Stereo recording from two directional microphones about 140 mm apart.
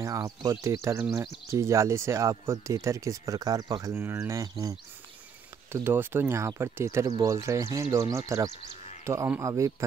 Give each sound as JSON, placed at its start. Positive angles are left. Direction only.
{"t": 0.0, "sound": "speech", "side_deg": -25}